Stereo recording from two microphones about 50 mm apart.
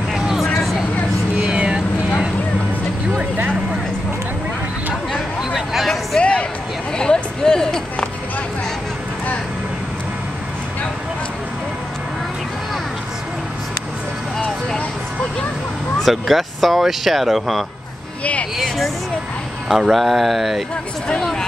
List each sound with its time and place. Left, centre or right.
0.1 s vehicle: centre
0.6 s a sound: centre
1.4 s vehicle: centre
6.1 s a sound: centre
16.1 s speech: centre
19.7 s speech: centre